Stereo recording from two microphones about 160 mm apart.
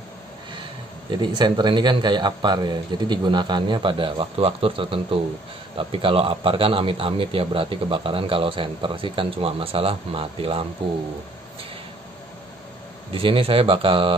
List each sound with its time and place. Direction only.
1.1 s a man's voice: 25° right (ahead or behind)
13.1 s a man's voice: 35° right (ahead or behind)